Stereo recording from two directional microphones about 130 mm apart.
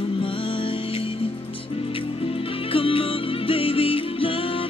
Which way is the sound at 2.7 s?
45° left (ahead or behind).